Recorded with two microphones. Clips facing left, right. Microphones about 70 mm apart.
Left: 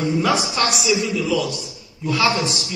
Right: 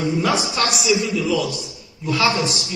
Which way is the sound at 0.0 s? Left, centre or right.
Centre.